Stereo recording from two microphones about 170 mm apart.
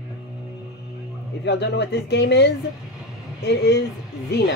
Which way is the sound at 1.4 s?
80° left.